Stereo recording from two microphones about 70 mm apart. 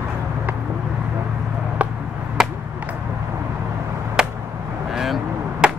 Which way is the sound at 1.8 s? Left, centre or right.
Centre.